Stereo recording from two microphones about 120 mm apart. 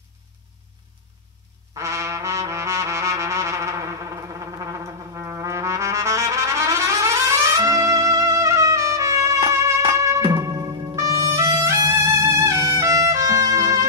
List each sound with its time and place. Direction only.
1.8 s brass instrument: 25° right (ahead or behind)
9.5 s music: 25° right (ahead or behind)
10.2 s music: 35° right (ahead or behind)